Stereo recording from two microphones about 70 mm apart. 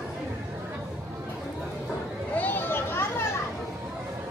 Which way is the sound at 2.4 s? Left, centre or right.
Left.